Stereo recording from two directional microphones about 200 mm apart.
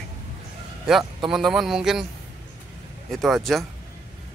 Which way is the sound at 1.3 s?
Centre (ahead or behind).